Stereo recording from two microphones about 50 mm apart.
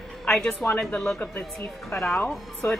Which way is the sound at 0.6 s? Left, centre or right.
Left.